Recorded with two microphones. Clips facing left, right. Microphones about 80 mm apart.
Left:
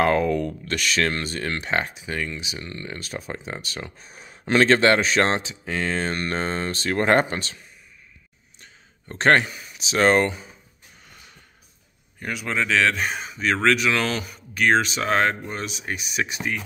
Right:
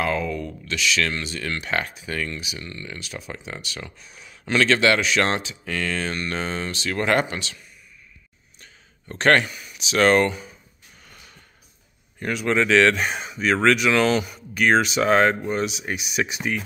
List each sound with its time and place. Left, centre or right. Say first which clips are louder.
0.0 s speech: left 5 dB; left; by 2.4 s centre
2.4 s speech: left 1 dB; left
9.1 s speech: even; left
12.2 s speech: right 4 dB; centre